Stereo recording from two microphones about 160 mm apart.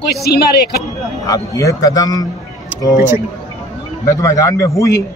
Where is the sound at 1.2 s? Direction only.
20° left (ahead or behind).